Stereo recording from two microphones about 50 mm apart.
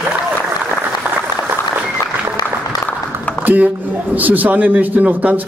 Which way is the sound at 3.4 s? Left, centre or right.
Right.